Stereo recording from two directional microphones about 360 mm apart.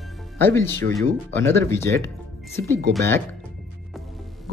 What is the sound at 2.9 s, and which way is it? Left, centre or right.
Speech, centre.